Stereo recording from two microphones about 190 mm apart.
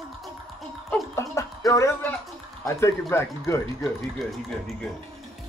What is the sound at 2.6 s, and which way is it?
Speech, 15° left (ahead or behind).